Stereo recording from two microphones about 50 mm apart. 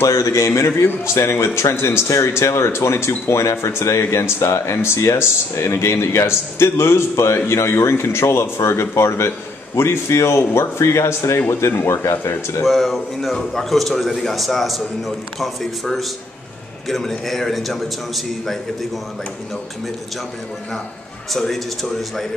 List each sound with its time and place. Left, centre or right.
0.0 s speech: left
11.7 s speech: left
12.6 s a man's voice: centre
21.3 s a man's voice: centre